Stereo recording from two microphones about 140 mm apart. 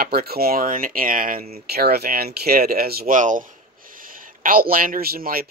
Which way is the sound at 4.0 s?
80° right.